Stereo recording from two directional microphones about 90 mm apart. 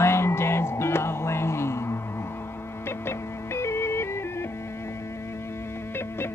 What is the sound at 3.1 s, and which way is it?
Music, 30° left (ahead or behind).